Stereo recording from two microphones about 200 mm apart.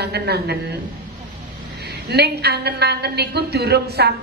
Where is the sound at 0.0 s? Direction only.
55° right (ahead or behind).